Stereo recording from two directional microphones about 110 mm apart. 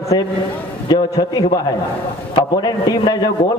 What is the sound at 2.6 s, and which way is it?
Speech, 40° left (ahead or behind).